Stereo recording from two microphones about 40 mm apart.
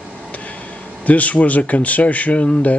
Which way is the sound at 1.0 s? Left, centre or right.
Left.